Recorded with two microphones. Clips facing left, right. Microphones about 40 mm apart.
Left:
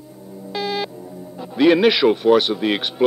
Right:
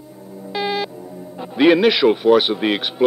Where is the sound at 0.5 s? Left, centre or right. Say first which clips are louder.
Right 2 dB; centre.